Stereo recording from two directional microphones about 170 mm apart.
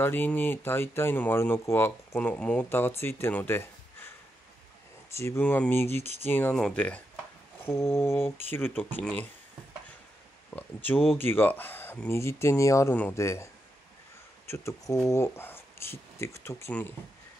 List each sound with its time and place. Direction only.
0.0 s speech: 10° left (ahead or behind)
5.1 s speech: 15° left (ahead or behind)
11.1 s speech: 10° left (ahead or behind)
14.5 s speech: 15° left (ahead or behind)